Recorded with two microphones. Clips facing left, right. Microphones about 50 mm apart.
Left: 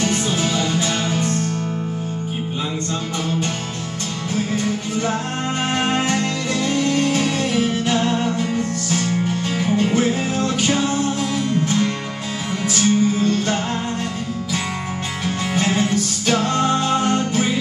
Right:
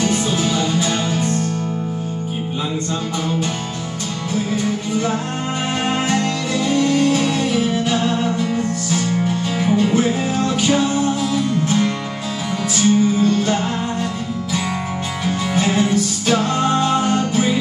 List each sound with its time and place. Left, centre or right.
0.0 s music: centre
5.9 s music: centre
15.2 s music: centre